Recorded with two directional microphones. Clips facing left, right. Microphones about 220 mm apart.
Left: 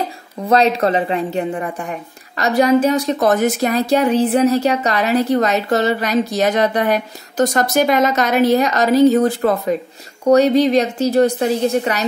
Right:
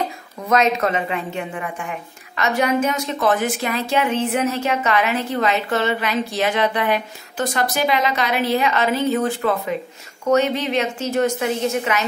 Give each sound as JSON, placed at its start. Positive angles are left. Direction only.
{"t": 0.5, "sound": "a woman's voice", "side_deg": 35}